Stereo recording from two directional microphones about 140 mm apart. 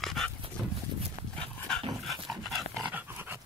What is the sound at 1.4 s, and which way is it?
Dog, 5° left (ahead or behind).